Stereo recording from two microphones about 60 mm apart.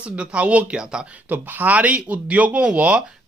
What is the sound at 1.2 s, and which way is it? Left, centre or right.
Speech, right.